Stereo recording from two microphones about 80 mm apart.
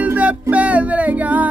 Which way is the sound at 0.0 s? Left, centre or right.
Centre.